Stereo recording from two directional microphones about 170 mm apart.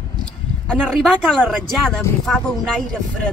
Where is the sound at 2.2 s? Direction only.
5° left (ahead or behind).